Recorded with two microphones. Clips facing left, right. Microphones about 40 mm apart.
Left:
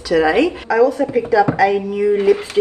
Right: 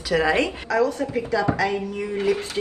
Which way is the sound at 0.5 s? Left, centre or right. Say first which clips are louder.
Left 7 dB; centre.